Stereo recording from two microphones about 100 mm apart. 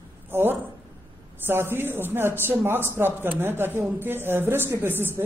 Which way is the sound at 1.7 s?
20° right (ahead or behind).